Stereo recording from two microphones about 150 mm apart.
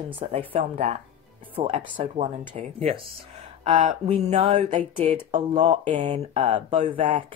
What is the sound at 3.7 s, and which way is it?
Music, 55° right (ahead or behind).